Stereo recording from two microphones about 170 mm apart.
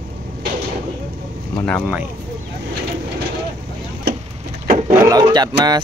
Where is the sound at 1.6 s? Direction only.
5° left (ahead or behind).